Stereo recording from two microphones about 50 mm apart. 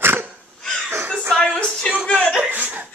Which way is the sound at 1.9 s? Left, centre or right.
Right.